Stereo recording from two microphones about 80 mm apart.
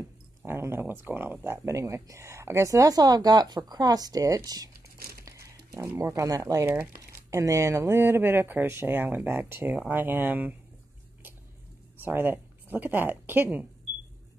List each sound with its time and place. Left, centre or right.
0.5 s speech: right
1.7 s speech: right
5.9 s speech: right
12.0 s speech: right